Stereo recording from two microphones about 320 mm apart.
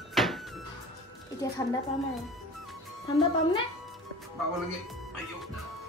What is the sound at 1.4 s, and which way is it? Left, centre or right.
Speech, centre.